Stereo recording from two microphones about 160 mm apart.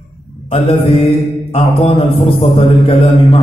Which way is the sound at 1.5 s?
35° left (ahead or behind).